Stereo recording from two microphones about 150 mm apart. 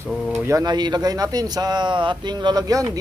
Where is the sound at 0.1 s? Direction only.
Centre (ahead or behind).